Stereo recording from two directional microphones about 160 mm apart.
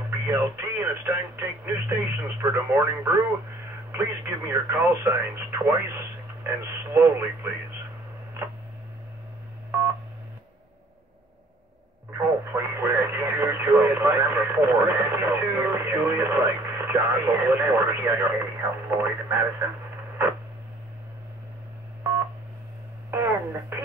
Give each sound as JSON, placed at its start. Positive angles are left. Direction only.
{"t": 0.3, "sound": "speech", "side_deg": -15}
{"t": 12.2, "sound": "radio", "side_deg": -15}
{"t": 23.1, "sound": "radio", "side_deg": -15}